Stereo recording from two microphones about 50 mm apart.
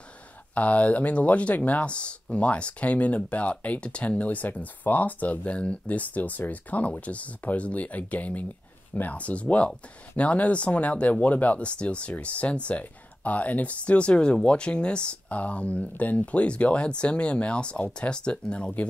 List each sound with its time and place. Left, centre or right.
0.6 s speech: left